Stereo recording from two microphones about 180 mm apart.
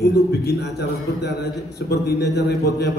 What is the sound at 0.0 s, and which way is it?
A man's voice, 65° left (ahead or behind).